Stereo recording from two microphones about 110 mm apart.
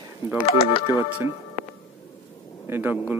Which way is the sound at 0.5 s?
55° left (ahead or behind).